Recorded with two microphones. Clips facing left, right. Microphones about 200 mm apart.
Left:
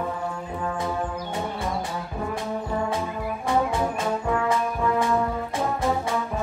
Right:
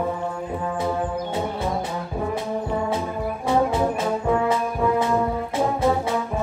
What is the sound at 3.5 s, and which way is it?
Brass instrument, 20° right (ahead or behind).